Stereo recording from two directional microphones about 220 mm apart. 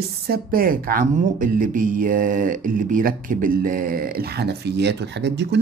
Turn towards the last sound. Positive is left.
turn(degrees=-50)  # may be behind; listen again after turning